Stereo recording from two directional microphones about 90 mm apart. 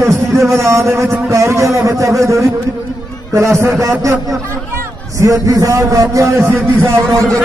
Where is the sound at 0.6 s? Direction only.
30° right (ahead or behind).